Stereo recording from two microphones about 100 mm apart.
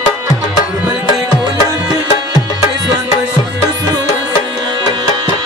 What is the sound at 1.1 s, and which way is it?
Music, 45° left (ahead or behind).